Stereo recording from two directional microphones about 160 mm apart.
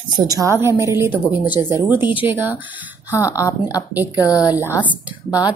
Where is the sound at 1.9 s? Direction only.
10° right (ahead or behind).